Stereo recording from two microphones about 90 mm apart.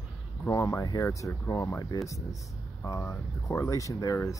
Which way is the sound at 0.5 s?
40° left (ahead or behind).